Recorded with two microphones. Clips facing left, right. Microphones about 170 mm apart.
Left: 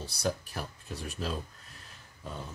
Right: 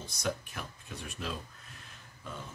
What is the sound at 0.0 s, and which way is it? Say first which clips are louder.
Speech: left 3 dB; 35° left (ahead or behind).